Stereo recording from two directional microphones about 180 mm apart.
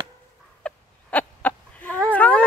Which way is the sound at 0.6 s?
10° left (ahead or behind).